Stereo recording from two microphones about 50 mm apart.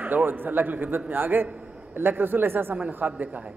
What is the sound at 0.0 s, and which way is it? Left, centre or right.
Speech, right.